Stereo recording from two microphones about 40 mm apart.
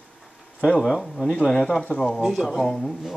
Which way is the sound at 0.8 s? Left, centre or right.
Centre.